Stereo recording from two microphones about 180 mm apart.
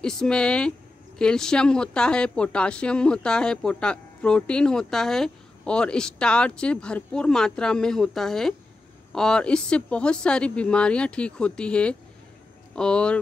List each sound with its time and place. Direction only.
0.0 s speech: 5° left (ahead or behind)